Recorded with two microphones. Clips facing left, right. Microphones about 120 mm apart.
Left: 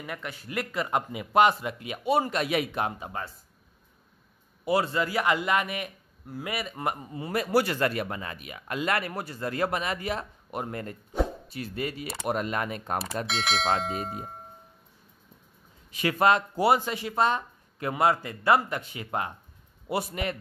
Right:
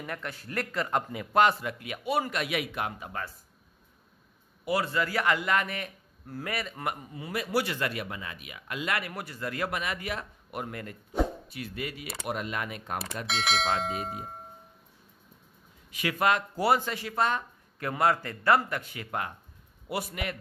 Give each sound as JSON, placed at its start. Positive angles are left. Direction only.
{"t": 0.0, "sound": "speech", "side_deg": 5}
{"t": 4.6, "sound": "speech", "side_deg": 25}
{"t": 6.8, "sound": "speech", "side_deg": 30}
{"t": 13.3, "sound": "speech", "side_deg": 0}
{"t": 15.9, "sound": "speech", "side_deg": 30}